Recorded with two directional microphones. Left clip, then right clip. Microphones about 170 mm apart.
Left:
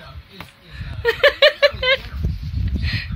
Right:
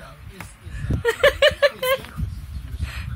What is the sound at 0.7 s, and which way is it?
Speech, 10° left (ahead or behind).